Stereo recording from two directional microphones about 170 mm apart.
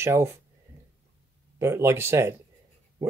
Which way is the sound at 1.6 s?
15° right (ahead or behind).